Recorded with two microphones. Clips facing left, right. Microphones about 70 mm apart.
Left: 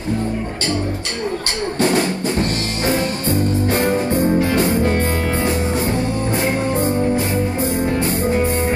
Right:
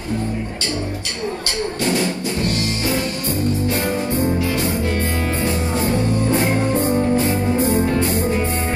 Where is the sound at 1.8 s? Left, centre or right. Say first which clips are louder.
Left 4 dB; left.